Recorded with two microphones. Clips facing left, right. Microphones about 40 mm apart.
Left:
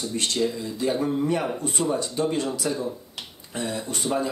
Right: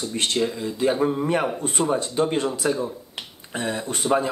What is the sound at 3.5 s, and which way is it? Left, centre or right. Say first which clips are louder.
Speech: right 2 dB; right.